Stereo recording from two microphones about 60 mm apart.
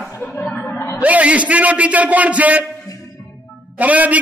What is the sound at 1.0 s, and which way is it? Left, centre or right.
A man's voice, right.